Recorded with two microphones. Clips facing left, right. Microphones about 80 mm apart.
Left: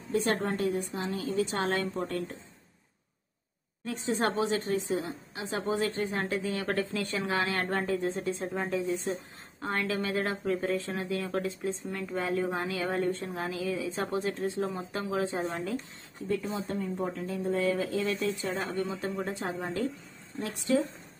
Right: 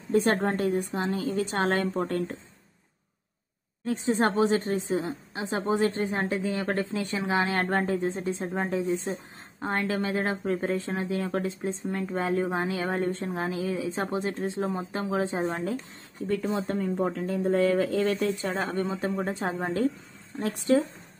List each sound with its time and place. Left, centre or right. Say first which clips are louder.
0.1 s a woman's voice: right 5 dB; right
3.8 s a woman's voice: right 4 dB; right
7.5 s a woman's voice: right 4 dB; right
7.9 s speech: right 2 dB; right
16.3 s a woman's voice: right 4 dB; right
19.0 s speech: right 4 dB; right
19.6 s a woman's voice: right 5 dB; right